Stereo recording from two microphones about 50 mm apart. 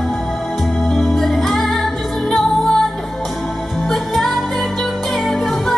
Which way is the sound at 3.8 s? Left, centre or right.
Centre.